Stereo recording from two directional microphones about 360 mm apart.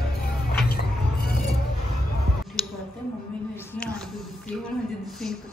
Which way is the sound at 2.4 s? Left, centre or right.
Centre.